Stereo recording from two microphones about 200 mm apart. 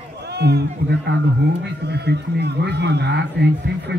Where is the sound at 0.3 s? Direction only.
55° right (ahead or behind).